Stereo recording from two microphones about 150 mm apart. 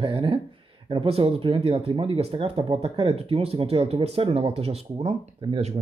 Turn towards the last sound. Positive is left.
turn(degrees=-35)  # may be behind; listen again after turning